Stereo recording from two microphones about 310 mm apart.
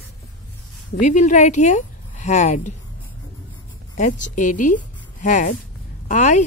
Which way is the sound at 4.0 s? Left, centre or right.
Left.